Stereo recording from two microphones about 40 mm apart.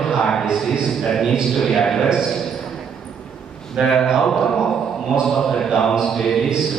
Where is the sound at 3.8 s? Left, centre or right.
Centre.